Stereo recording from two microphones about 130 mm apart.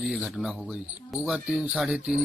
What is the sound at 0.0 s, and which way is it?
Speech, centre (ahead or behind).